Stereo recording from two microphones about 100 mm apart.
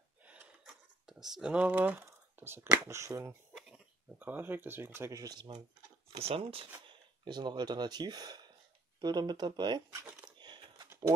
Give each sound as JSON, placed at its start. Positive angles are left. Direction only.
{"t": 0.2, "sound": "a sound", "side_deg": -15}
{"t": 2.0, "sound": "speech", "side_deg": -25}
{"t": 3.5, "sound": "a sound", "side_deg": -5}
{"t": 4.2, "sound": "speech", "side_deg": -20}
{"t": 5.2, "sound": "speech", "side_deg": -40}
{"t": 6.1, "sound": "speech", "side_deg": -75}
{"t": 7.2, "sound": "speech", "side_deg": -50}
{"t": 10.2, "sound": "a sound", "side_deg": -50}
{"t": 11.1, "sound": "speech", "side_deg": -40}